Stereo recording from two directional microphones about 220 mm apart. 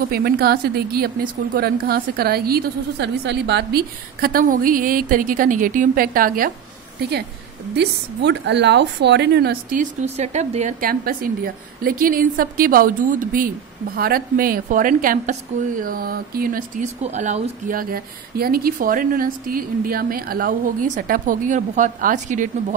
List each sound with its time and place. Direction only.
0.1 s a woman's voice: 45° right (ahead or behind)
7.7 s a woman's voice: 50° right (ahead or behind); by 22.8 s 35° right (ahead or behind)